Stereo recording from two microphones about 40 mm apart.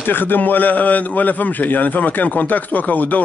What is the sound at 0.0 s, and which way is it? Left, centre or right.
A man's voice, left.